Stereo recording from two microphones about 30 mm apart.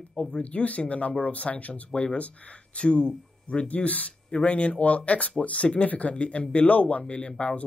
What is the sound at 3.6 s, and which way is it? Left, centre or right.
Speech, left.